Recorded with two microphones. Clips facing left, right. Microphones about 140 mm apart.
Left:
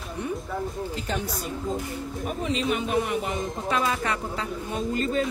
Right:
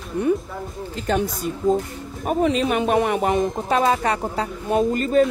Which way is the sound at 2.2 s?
60° right (ahead or behind).